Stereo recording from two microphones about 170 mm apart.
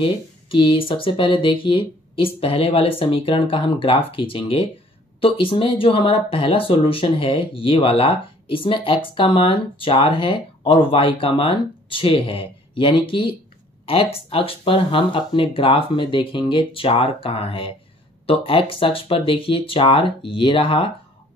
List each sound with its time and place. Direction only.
0.0 s speech: 30° left (ahead or behind)